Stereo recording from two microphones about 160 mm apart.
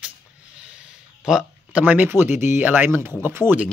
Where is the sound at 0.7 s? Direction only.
5° right (ahead or behind).